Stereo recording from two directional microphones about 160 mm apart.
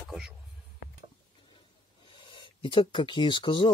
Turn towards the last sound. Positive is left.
turn(degrees=30)  # may be behind; listen again after turning